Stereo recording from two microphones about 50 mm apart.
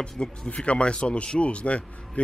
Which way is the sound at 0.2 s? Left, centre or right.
Centre.